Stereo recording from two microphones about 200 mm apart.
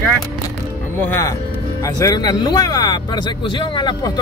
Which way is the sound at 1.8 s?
15° left (ahead or behind).